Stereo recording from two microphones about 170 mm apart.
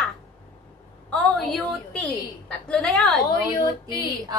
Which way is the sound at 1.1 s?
Centre (ahead or behind).